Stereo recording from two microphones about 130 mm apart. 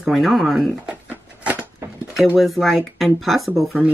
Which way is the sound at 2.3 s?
Centre (ahead or behind).